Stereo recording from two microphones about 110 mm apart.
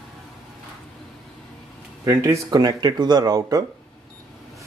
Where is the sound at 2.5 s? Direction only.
40° right (ahead or behind).